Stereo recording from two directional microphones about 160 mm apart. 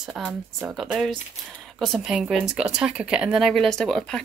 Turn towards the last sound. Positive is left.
turn(degrees=5)  # may be behind; listen again after turning